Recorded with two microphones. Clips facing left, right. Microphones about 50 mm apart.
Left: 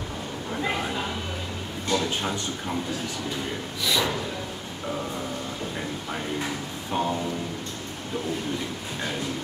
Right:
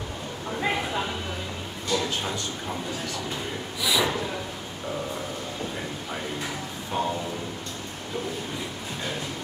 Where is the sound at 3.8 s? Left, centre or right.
Centre.